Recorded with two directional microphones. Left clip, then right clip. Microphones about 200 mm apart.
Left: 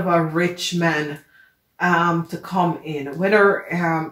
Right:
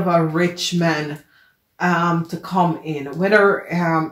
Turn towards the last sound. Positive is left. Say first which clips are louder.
# right 1 dB
turn(degrees=-25)  # may be behind; listen again after turning